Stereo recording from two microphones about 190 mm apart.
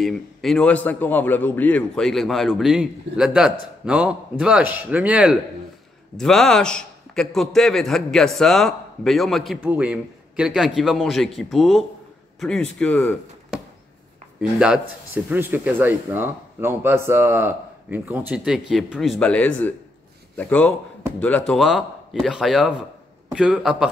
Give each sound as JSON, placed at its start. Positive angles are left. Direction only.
{"t": 0.0, "sound": "a man's voice", "side_deg": 0}
{"t": 14.6, "sound": "a man's voice", "side_deg": -5}